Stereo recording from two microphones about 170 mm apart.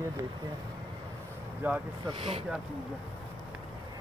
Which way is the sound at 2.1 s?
35° right (ahead or behind).